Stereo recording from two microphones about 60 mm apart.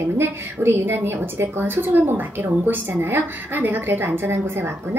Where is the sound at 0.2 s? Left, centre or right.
Right.